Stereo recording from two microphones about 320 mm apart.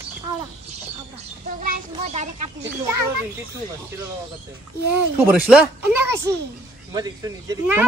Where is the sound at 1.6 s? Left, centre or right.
Right.